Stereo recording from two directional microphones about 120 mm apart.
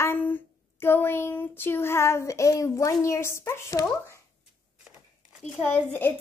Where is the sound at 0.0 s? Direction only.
15° left (ahead or behind).